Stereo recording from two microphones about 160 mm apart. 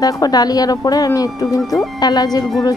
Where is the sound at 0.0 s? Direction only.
25° left (ahead or behind).